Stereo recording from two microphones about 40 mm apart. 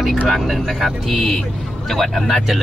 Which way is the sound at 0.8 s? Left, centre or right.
Centre.